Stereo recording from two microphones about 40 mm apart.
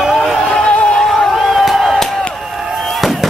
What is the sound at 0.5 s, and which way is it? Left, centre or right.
Music, left.